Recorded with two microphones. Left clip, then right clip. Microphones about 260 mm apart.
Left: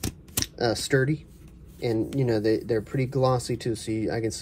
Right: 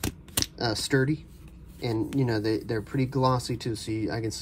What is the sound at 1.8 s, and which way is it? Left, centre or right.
Speech, right.